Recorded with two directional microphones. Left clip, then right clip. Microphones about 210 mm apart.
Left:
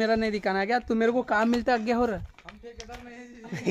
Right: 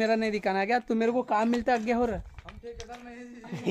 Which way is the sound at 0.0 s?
5° left (ahead or behind).